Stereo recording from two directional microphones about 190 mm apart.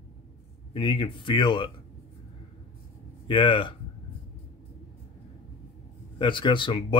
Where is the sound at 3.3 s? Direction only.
25° left (ahead or behind).